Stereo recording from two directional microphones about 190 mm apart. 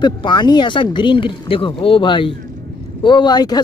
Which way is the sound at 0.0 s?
25° left (ahead or behind).